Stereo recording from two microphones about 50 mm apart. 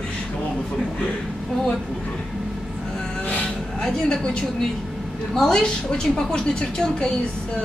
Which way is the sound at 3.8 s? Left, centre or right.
Centre.